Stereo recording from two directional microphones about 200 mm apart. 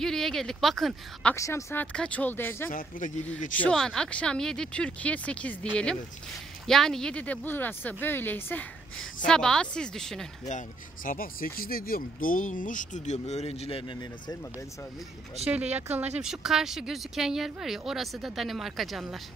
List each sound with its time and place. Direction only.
0.0 s speech: centre (ahead or behind)
1.3 s speech: 15° left (ahead or behind)
6.7 s speech: centre (ahead or behind)
11.1 s speech: 45° left (ahead or behind); by 14.3 s 25° left (ahead or behind)
15.4 s speech: 10° right (ahead or behind)